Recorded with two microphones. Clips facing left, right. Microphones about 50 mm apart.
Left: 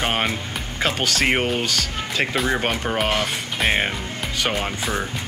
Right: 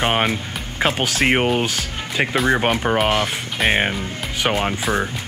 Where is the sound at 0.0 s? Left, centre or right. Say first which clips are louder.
Right 3 dB; centre.